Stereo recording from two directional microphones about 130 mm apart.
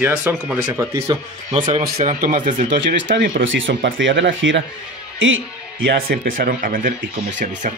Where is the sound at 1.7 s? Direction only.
60° right (ahead or behind); by 3.2 s 85° right.